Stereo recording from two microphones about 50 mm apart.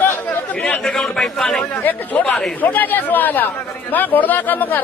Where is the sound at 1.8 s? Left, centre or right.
Left.